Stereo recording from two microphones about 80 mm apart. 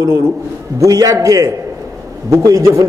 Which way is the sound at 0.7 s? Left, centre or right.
Right.